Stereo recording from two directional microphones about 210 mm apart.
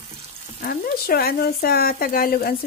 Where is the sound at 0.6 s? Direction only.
45° left (ahead or behind).